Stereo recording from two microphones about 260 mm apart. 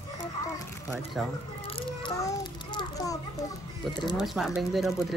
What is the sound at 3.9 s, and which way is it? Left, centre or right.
Speech, centre.